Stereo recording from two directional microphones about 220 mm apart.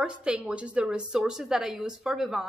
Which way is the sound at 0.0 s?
5° right (ahead or behind).